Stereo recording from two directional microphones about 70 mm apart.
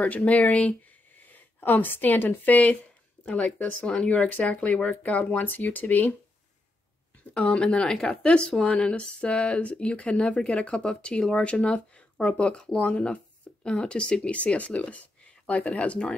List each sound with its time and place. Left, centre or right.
0.0 s speech: left
7.3 s speech: centre